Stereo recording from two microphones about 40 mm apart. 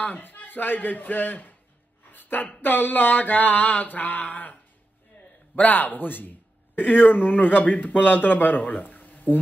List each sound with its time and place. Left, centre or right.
0.1 s mantra: left
2.1 s a sound: left
2.6 s mantra: left
5.6 s speech: left
7.5 s mantra: left